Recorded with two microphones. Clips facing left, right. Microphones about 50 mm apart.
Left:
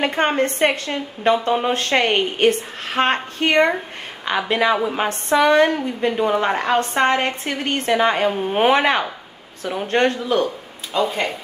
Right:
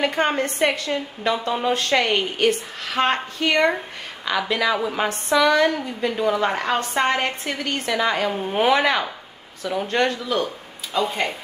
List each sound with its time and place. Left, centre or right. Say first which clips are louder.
0.0 s a woman's voice: left 2 dB; left
11.0 s speech: left 2 dB; centre